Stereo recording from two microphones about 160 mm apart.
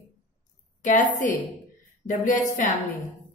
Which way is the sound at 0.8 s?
50° left (ahead or behind).